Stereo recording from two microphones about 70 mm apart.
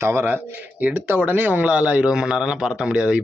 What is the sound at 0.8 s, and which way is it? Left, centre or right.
A man's voice, right.